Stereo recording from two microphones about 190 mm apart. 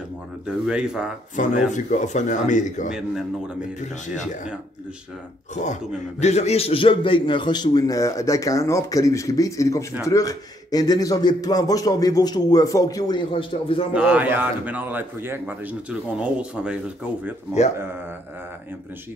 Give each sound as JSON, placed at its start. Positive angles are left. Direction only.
{"t": 0.5, "sound": "a man's voice", "side_deg": -5}
{"t": 1.3, "sound": "speech", "side_deg": 40}
{"t": 2.9, "sound": "a man's voice", "side_deg": -5}
{"t": 5.5, "sound": "a man's voice", "side_deg": 40}
{"t": 13.9, "sound": "a man's voice", "side_deg": -5}